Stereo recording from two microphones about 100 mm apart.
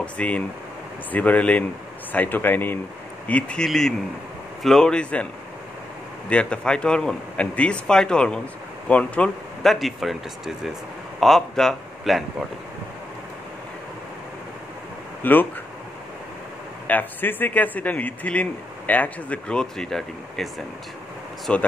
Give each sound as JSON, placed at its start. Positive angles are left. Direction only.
{"t": 0.0, "sound": "a man's voice", "side_deg": 15}
{"t": 9.6, "sound": "speech", "side_deg": 0}
{"t": 15.2, "sound": "speech", "side_deg": 20}
{"t": 16.8, "sound": "a man's voice", "side_deg": 20}